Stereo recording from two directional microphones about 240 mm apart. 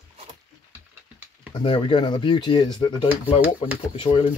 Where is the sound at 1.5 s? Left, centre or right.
Left.